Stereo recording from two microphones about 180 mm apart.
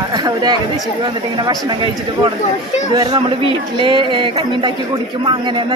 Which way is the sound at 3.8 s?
25° right (ahead or behind).